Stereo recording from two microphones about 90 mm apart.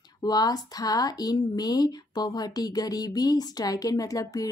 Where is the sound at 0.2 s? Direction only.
50° left (ahead or behind).